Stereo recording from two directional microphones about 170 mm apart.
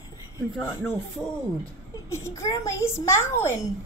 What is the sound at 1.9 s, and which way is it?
A child's voice, 15° left (ahead or behind).